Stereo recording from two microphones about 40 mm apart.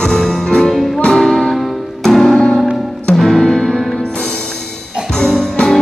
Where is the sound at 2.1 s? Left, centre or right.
Centre.